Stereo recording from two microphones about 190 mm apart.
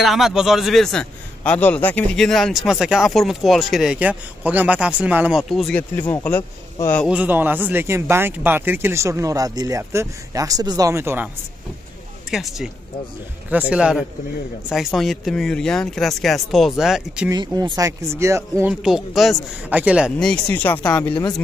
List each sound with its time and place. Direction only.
0.0 s speech: centre (ahead or behind)
7.1 s speech: 10° right (ahead or behind)
12.3 s speech: centre (ahead or behind)
17.3 s speech: 20° right (ahead or behind); by 21.1 s 10° left (ahead or behind)
21.1 s speech: 20° left (ahead or behind)